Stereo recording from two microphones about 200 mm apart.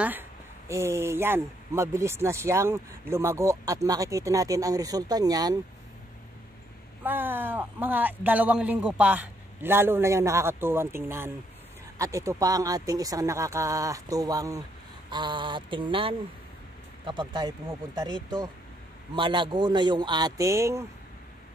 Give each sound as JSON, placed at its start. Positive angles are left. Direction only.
{"t": 0.7, "sound": "speech", "side_deg": -15}
{"t": 7.0, "sound": "a man's voice", "side_deg": -10}